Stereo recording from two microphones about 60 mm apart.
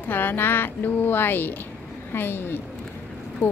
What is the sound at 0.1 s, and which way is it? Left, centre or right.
Speech, left.